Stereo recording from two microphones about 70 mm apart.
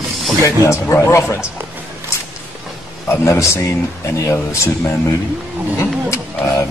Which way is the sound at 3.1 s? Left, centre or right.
Left.